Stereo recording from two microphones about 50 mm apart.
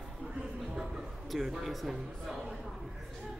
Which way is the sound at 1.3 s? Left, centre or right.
Centre.